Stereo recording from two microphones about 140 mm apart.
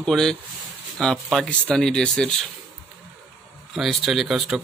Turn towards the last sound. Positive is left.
turn(degrees=-5)  # may be behind; listen again after turning